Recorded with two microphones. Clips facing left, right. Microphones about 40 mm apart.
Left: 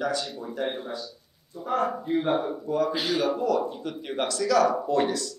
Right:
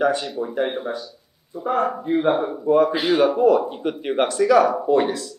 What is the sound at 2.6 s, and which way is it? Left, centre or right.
A man's voice, right.